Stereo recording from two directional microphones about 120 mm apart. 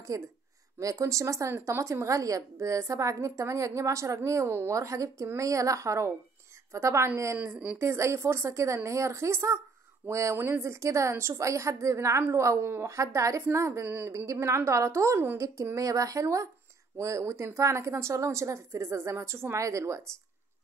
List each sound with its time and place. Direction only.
0.1 s speech: 30° right (ahead or behind)